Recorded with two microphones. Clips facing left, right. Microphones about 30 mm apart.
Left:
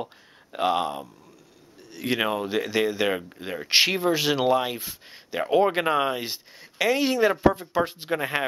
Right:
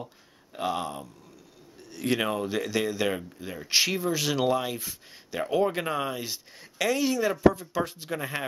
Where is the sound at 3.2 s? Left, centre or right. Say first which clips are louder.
Left 5 dB; left.